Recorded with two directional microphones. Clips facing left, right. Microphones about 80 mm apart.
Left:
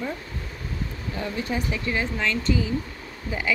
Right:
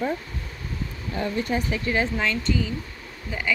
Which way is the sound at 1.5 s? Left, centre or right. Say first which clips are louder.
Right 2 dB; right.